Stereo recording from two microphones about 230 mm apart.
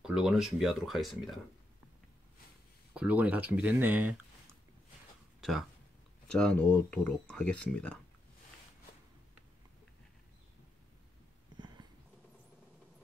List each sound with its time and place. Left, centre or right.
0.0 s speech: centre
2.9 s speech: centre
5.4 s speech: centre
11.5 s a sound: centre